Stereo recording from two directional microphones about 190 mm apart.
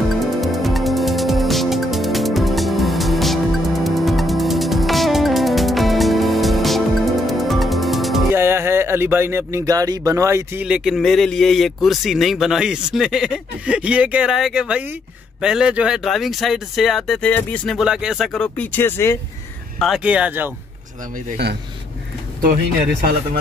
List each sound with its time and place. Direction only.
0.2 s music: centre (ahead or behind)
8.3 s speech: 15° right (ahead or behind); by 17.7 s 10° left (ahead or behind)
17.7 s speech: 5° right (ahead or behind); by 19.1 s 10° left (ahead or behind)
19.8 s speech: 5° right (ahead or behind)